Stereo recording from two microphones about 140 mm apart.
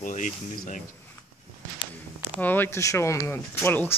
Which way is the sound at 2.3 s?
15° left (ahead or behind).